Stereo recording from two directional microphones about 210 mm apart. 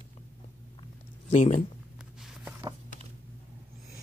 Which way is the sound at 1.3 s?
35° left (ahead or behind).